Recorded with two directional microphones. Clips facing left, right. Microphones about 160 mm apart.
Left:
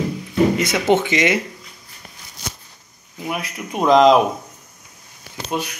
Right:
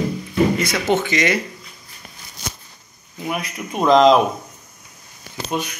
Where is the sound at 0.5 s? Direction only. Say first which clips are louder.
Left 2 dB; 20° left (ahead or behind).